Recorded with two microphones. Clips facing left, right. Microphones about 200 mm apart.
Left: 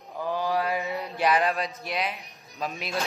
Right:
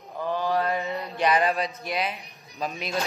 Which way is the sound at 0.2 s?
10° left (ahead or behind).